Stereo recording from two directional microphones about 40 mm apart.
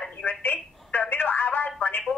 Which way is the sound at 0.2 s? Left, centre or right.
Left.